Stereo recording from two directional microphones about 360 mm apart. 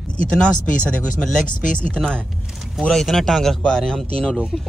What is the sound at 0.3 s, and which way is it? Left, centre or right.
Speech, centre.